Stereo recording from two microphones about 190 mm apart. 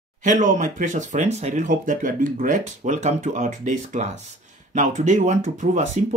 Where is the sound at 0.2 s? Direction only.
40° right (ahead or behind).